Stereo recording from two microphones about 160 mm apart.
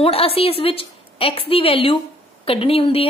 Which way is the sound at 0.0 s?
35° left (ahead or behind).